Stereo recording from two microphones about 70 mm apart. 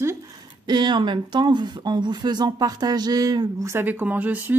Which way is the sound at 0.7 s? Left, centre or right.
Right.